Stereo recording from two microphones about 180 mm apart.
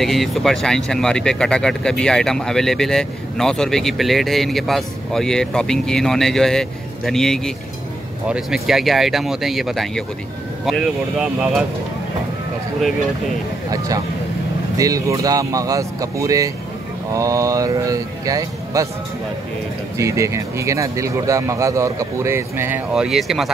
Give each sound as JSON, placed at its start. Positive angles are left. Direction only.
{"t": 0.0, "sound": "speech", "side_deg": 0}
{"t": 14.8, "sound": "speech", "side_deg": -20}
{"t": 20.0, "sound": "speech", "side_deg": -15}